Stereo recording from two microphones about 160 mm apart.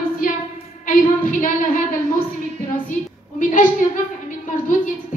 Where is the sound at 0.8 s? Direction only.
60° left (ahead or behind).